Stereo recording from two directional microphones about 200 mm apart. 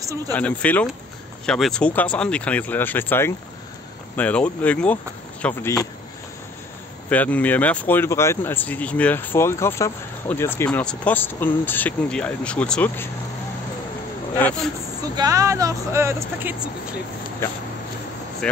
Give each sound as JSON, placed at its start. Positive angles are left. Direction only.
{"t": 0.3, "sound": "speech", "side_deg": 5}
{"t": 7.1, "sound": "speech", "side_deg": 5}
{"t": 15.1, "sound": "speech", "side_deg": -15}
{"t": 18.4, "sound": "speech", "side_deg": 5}